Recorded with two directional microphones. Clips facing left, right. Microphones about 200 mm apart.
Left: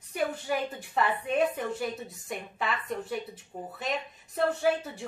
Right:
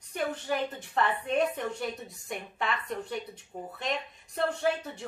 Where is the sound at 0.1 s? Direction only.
5° left (ahead or behind).